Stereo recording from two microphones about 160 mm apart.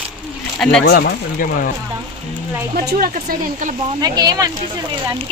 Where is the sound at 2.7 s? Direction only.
70° right (ahead or behind).